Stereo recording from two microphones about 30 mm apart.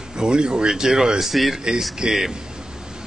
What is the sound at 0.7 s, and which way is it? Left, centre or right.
Speech, centre.